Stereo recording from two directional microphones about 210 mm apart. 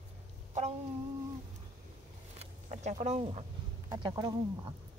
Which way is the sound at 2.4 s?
35° right (ahead or behind).